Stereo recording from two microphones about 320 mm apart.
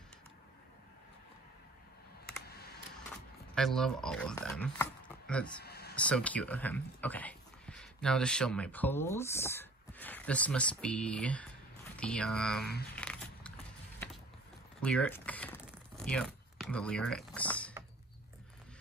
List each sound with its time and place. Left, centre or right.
2.4 s computer keyboard: left
3.5 s speech: centre
5.6 s a sound: left
5.9 s speech: centre
12.9 s a sound: centre
14.8 s speech: centre